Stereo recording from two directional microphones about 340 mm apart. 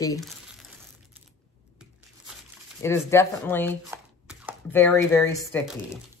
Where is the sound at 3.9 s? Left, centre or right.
Centre.